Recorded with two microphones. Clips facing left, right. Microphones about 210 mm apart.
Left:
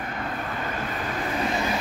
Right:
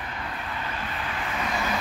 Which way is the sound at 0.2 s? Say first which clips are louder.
Left 4 dB; 45° left (ahead or behind).